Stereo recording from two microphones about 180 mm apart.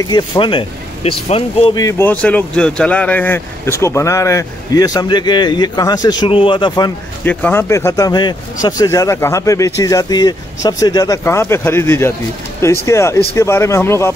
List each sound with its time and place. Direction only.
0.0 s speech: 25° left (ahead or behind)
1.8 s speech: 15° left (ahead or behind)
7.2 s speech: 10° left (ahead or behind)